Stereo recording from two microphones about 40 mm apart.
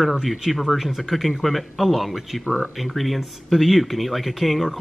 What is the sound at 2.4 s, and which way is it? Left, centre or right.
Speech, right.